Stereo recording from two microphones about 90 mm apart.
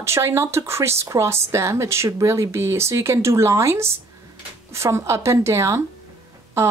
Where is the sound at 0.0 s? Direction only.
30° right (ahead or behind).